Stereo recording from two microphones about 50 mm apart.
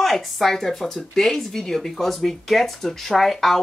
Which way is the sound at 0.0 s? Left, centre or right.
Centre.